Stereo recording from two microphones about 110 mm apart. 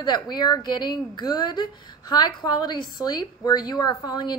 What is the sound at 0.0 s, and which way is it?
A woman's voice, 40° left (ahead or behind).